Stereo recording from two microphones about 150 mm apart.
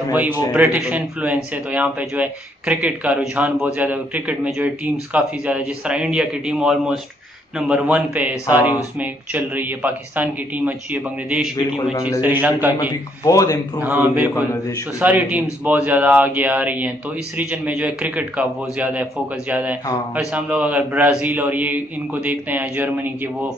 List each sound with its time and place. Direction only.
0.1 s speech: 10° right (ahead or behind)
11.5 s a man's voice: 30° left (ahead or behind)
12.2 s speech: 10° right (ahead or behind)
13.2 s a man's voice: 20° left (ahead or behind)
13.7 s speech: 10° right (ahead or behind)